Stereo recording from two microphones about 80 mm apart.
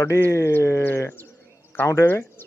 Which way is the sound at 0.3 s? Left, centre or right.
Left.